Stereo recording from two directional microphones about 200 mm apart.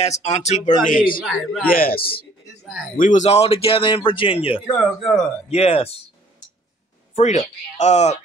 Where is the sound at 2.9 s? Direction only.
40° left (ahead or behind).